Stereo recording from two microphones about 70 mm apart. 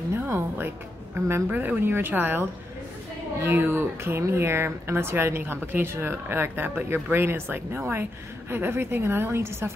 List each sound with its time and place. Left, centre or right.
0.1 s music: right
1.1 s a woman's voice: right
1.5 s a woman's voice: right